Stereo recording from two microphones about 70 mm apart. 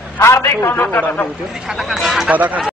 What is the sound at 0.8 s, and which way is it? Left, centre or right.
Speech, left.